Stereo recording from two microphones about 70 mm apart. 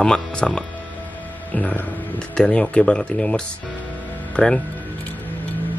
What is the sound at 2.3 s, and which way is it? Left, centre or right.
Speech, centre.